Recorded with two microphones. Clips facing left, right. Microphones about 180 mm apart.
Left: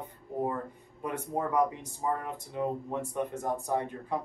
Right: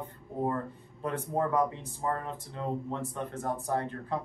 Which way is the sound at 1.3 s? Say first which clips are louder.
Even; 15° left (ahead or behind).